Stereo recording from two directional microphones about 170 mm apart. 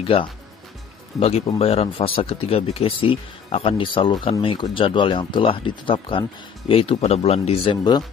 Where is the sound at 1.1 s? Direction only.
Centre (ahead or behind).